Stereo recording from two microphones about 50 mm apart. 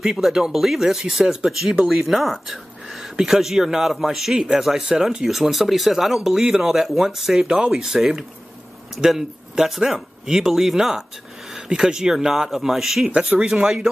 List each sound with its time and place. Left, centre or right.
0.0 s speech: centre